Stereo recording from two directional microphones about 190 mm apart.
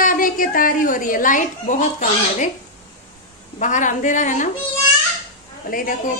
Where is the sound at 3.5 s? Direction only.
40° left (ahead or behind).